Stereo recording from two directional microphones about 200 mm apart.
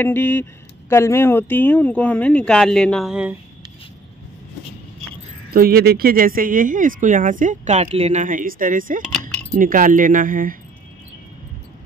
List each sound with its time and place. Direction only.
0.0 s speech: 10° left (ahead or behind)
5.5 s speech: 50° right (ahead or behind)